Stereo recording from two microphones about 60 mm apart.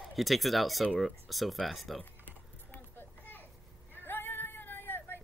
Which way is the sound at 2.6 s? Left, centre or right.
Left.